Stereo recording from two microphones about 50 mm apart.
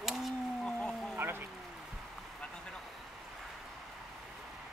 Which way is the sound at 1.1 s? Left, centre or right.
Right.